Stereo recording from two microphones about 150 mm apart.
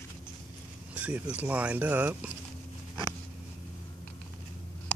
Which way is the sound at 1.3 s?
10° right (ahead or behind).